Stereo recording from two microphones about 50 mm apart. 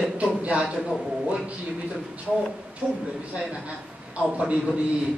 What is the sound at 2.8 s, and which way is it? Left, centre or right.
Speech, right.